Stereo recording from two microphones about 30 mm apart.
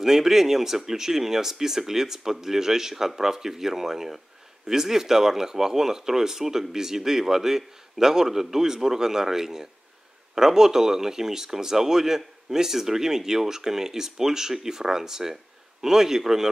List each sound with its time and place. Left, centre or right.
0.0 s speech: centre